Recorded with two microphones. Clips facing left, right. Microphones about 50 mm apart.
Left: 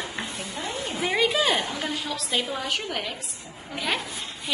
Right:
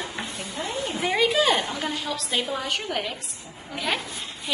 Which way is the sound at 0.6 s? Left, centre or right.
Right.